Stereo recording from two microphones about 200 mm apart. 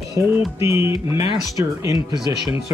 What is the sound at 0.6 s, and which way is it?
Speech, 15° right (ahead or behind).